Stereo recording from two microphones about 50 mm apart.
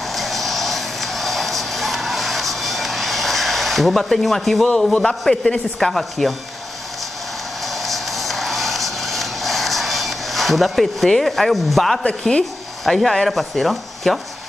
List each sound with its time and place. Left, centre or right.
0.1 s music: centre
4.9 s speech: centre
7.6 s music: centre
12.0 s speech: centre
12.8 s speech: centre